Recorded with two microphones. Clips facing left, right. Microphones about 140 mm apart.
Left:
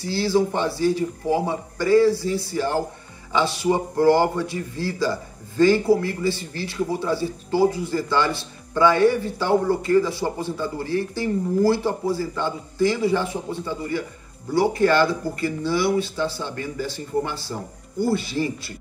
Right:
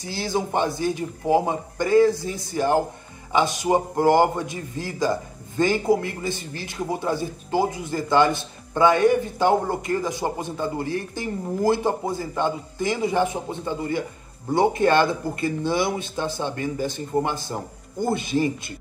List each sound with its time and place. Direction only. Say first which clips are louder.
0.0 s speech: left 5 dB; 15° right (ahead or behind)
3.9 s speech: left 1 dB; 15° right (ahead or behind)